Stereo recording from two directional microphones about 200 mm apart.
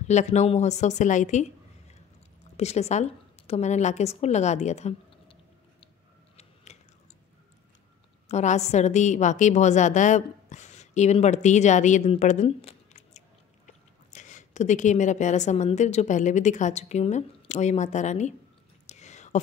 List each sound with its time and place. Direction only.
0.1 s a woman's voice: 35° left (ahead or behind)
6.3 s biting: 35° left (ahead or behind)
8.3 s a woman's voice: 35° left (ahead or behind)
18.9 s whispering: 35° left (ahead or behind)